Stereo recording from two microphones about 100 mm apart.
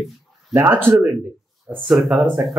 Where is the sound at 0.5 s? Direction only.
20° right (ahead or behind).